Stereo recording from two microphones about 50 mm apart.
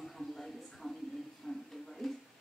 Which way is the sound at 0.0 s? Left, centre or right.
Centre.